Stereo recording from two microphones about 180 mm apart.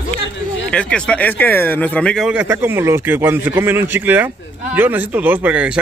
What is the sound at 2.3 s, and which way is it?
A man's voice, 10° right (ahead or behind).